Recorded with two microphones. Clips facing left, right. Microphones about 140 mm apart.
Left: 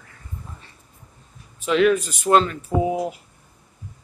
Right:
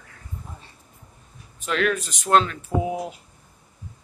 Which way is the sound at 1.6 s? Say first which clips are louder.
Left 6 dB; 5° left (ahead or behind).